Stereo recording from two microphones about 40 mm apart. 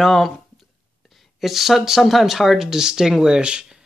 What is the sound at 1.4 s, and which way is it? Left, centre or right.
Speech, centre.